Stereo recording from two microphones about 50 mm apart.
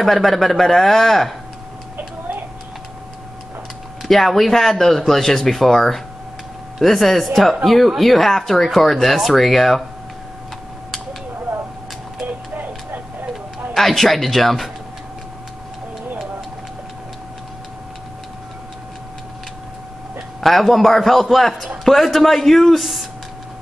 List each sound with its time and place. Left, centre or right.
0.0 s speech: centre
2.0 s a sound: right
4.1 s speech: centre
12.3 s tick-tock: right
13.7 s speech: centre
20.3 s speech: centre